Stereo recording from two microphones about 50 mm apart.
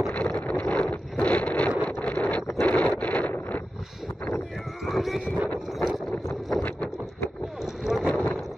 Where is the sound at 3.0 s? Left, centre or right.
Left.